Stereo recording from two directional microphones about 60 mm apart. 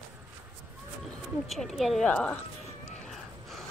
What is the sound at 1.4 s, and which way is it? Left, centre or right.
Speech, centre.